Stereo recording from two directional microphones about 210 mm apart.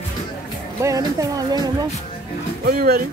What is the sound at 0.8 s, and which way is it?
Speech, 15° right (ahead or behind).